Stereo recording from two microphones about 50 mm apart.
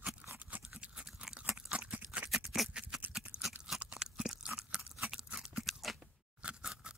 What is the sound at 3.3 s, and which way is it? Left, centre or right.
Crunch, right.